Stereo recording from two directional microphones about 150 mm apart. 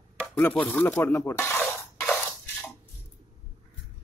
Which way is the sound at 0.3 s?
10° left (ahead or behind).